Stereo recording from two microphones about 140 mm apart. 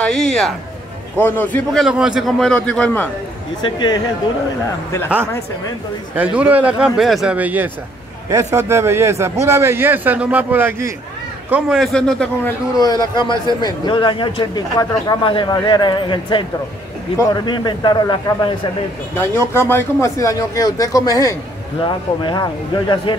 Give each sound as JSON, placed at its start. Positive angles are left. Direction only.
{"t": 0.0, "sound": "a man's voice", "side_deg": 5}
{"t": 3.6, "sound": "a man's voice", "side_deg": 35}
{"t": 6.1, "sound": "a man's voice", "side_deg": -10}
{"t": 8.3, "sound": "a man's voice", "side_deg": -20}
{"t": 11.5, "sound": "a man's voice", "side_deg": 0}
{"t": 12.7, "sound": "a man's voice", "side_deg": 30}
{"t": 19.1, "sound": "a man's voice", "side_deg": 15}